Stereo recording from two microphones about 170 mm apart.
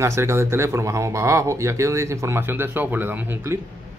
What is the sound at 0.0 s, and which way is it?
Speech, 15° right (ahead or behind).